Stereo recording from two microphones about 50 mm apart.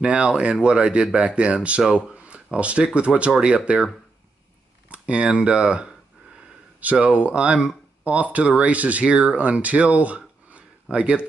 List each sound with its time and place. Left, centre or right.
0.0 s speech: right